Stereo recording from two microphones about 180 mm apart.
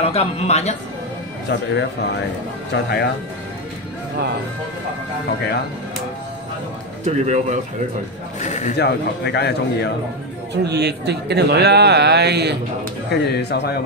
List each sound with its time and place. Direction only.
0.0 s speech: 35° left (ahead or behind)
1.5 s a man's voice: 65° left (ahead or behind)
2.7 s speech: 65° left (ahead or behind)
7.1 s speech: 40° right (ahead or behind)
8.4 s speech: 40° left (ahead or behind)
8.7 s a man's voice: 70° left (ahead or behind)
10.5 s a man's voice: 65° right (ahead or behind)
13.1 s a man's voice: 65° left (ahead or behind)